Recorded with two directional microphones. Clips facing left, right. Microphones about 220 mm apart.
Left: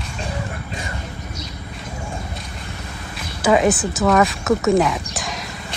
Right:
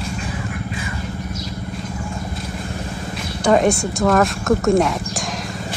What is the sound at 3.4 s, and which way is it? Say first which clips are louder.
Speech: right 1 dB; centre (ahead or behind).